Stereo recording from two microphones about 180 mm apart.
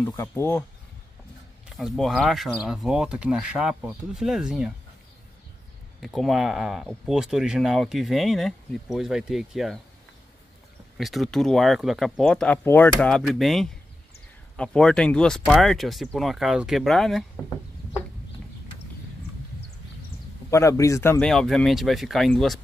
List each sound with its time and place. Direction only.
0.3 s speech: 10° left (ahead or behind)
1.7 s speech: centre (ahead or behind)
6.0 s speech: centre (ahead or behind)
11.0 s speech: centre (ahead or behind)
20.4 s speech: 15° left (ahead or behind)
21.3 s speech: centre (ahead or behind)